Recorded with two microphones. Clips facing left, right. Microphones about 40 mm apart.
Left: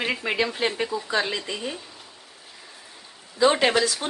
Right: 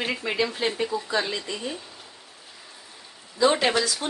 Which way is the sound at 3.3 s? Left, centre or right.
Centre.